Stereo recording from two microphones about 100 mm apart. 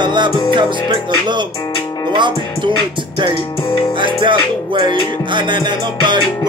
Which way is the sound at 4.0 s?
55° right (ahead or behind).